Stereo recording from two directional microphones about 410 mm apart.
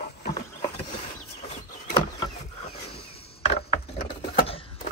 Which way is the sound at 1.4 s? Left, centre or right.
Centre.